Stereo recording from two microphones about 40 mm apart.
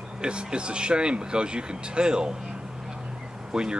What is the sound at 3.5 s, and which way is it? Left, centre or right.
Speech, right.